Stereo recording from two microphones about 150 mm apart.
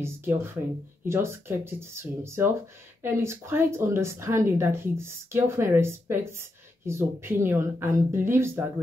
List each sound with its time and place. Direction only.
0.0 s speech: 15° right (ahead or behind)